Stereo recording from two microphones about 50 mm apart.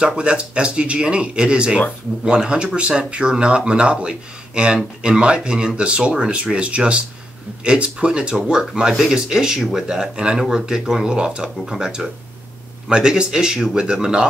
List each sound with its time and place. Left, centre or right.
0.0 s speech: right